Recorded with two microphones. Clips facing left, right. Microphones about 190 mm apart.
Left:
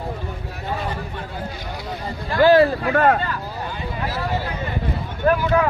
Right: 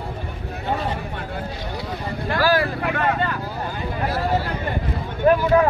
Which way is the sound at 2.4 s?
25° left (ahead or behind).